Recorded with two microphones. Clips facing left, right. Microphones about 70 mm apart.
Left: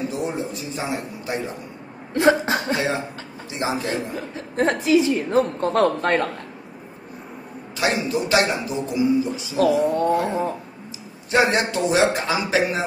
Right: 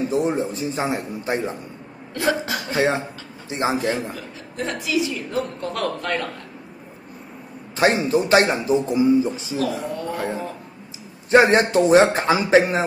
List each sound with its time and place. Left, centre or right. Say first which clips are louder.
0.1 s speech: right 5 dB; right
2.1 s a woman's voice: left 5 dB; left
2.7 s speech: right 2 dB; right
4.1 s a woman's voice: left 4 dB; left
7.7 s speech: right 4 dB; right
9.6 s a woman's voice: left 9 dB; left
11.2 s speech: right 4 dB; right